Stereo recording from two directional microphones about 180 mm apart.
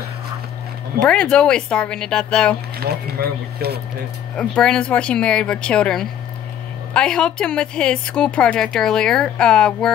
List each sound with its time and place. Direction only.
1.0 s a woman's voice: 5° left (ahead or behind)
2.8 s speech: 60° right (ahead or behind)
4.4 s a woman's voice: 5° left (ahead or behind)